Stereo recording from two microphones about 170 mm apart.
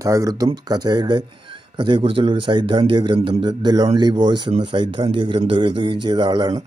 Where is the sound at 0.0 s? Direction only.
20° right (ahead or behind).